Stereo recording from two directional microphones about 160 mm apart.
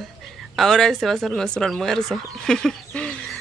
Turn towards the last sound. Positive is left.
turn(degrees=5)  # may be behind; listen again after turning